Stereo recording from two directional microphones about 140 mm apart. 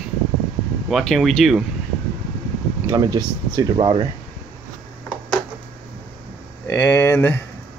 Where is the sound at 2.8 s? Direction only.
25° right (ahead or behind).